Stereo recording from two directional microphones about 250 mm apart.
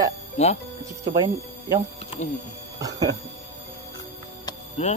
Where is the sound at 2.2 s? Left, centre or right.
Left.